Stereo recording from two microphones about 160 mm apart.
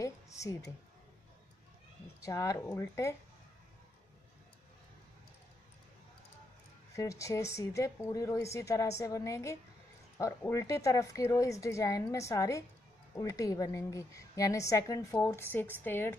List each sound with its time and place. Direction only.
0.0 s a sound: 20° left (ahead or behind)
2.2 s speech: 20° left (ahead or behind)
7.0 s a woman's voice: 20° left (ahead or behind)